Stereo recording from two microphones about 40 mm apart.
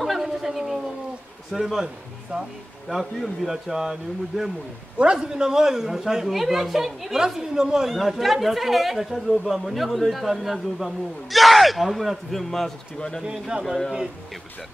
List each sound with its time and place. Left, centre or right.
0.0 s a sound: centre
1.5 s a man's voice: centre
2.3 s speech: right
2.9 s a woman's voice: centre
8.0 s speech: centre
13.2 s a woman's voice: centre